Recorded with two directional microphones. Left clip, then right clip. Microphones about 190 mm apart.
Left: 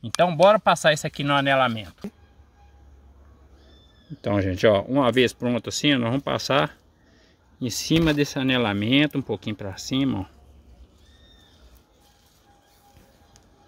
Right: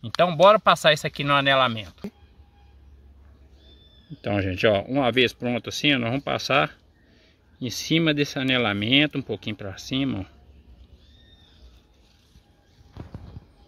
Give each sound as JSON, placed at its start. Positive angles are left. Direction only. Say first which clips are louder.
{"t": 0.1, "sound": "speech", "louder": "right 1 dB", "side_deg": 5}
{"t": 4.2, "sound": "speech", "louder": "left 2 dB", "side_deg": 30}